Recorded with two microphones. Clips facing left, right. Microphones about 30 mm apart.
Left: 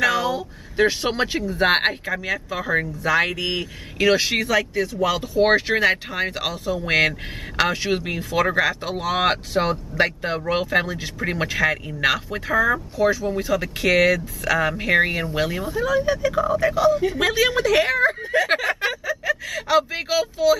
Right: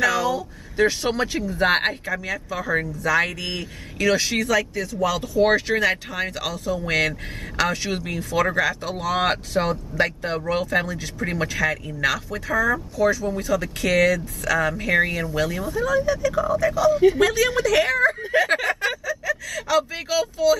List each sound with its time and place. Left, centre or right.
0.0 s a sound: centre
1.5 s speech: centre
18.2 s speech: centre
18.8 s speech: left